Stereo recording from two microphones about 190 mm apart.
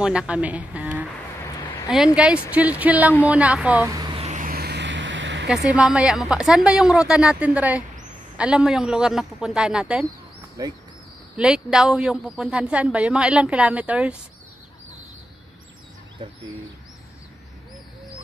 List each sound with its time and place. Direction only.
0.0 s speech: 5° right (ahead or behind)
4.2 s vehicle: 40° right (ahead or behind); by 5.5 s 70° right (ahead or behind)
5.5 s speech: 5° right (ahead or behind)
10.6 s speech: 20° right (ahead or behind)
11.3 s speech: 5° right (ahead or behind)